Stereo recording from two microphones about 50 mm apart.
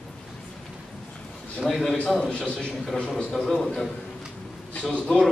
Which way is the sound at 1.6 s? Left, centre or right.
Centre.